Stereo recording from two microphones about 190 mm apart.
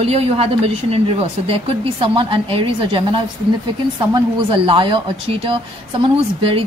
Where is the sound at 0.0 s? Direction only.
35° right (ahead or behind).